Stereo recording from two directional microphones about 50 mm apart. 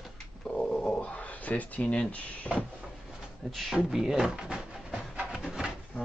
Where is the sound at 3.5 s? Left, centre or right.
Centre.